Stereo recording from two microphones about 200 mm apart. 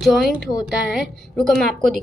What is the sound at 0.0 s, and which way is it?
Speech, centre (ahead or behind).